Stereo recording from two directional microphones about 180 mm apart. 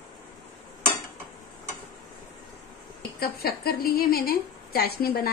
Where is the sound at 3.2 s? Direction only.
55° left (ahead or behind).